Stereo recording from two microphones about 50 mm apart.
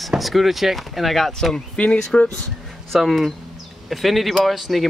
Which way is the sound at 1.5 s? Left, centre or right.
Left.